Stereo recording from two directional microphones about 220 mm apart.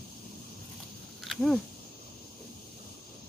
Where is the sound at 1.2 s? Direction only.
Centre (ahead or behind).